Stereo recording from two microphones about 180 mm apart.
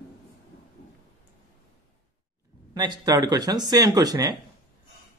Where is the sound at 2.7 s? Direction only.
20° right (ahead or behind).